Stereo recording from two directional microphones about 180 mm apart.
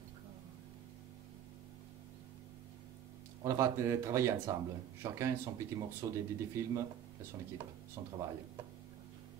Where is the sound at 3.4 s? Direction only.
15° right (ahead or behind).